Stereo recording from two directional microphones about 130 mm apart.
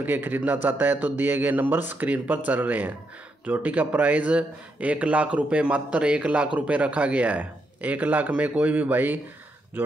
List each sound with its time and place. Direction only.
0.0 s speech: 15° right (ahead or behind)